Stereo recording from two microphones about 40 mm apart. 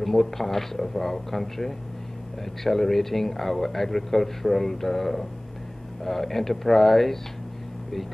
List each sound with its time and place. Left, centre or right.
0.0 s speech: centre